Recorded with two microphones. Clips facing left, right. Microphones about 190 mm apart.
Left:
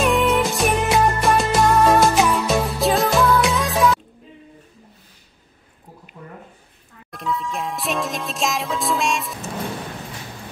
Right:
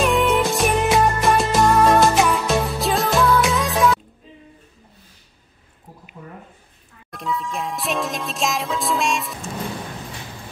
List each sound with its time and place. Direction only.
0.0 s music: centre (ahead or behind)
7.1 s music: centre (ahead or behind)